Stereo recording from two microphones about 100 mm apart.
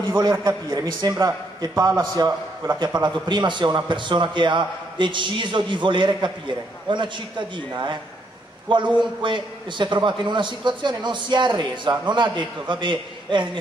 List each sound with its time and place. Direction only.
0.3 s a man's voice: 40° right (ahead or behind)